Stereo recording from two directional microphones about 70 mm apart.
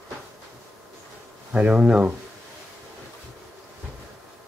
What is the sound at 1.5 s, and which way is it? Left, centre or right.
Speech, centre.